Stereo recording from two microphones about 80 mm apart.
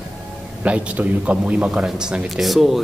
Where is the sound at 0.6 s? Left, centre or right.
Centre.